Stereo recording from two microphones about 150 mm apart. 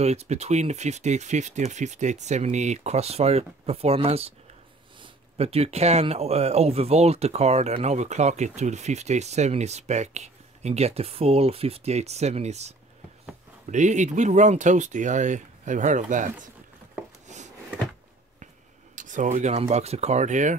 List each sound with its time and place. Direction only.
0.0 s speech: 45° right (ahead or behind)
17.3 s a sound: 50° right (ahead or behind)
18.9 s speech: 55° right (ahead or behind)